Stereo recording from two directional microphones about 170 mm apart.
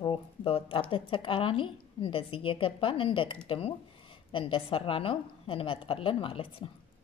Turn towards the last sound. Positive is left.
turn(degrees=30)  # may be behind; listen again after turning